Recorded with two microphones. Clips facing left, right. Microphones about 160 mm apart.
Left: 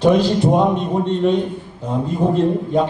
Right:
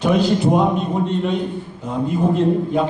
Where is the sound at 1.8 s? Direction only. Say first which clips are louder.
Even; 35° left (ahead or behind).